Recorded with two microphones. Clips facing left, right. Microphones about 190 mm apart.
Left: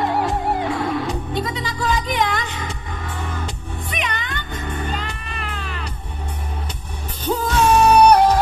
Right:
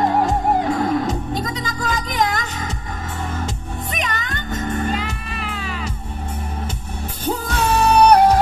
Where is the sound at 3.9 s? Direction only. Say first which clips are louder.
Even; 45° right (ahead or behind).